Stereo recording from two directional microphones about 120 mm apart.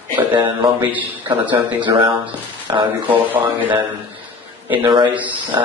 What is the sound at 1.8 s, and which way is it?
Speech, 45° right (ahead or behind).